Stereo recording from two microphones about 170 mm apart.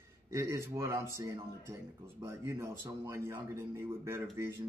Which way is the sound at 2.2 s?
15° right (ahead or behind).